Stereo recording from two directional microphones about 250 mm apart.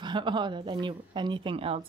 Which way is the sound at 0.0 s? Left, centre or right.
Centre.